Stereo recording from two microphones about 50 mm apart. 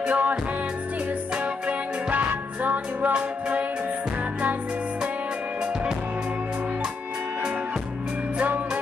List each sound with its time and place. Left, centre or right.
0.0 s music: right